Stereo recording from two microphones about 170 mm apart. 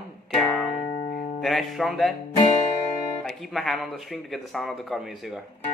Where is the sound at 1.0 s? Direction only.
55° left (ahead or behind).